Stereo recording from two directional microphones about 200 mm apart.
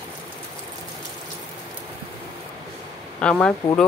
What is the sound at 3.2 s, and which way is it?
Speech, 5° left (ahead or behind).